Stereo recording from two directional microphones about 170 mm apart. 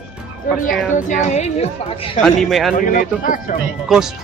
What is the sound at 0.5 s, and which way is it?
A woman's voice, 50° left (ahead or behind).